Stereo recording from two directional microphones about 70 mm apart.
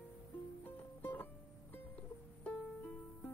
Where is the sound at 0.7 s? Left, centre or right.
Left.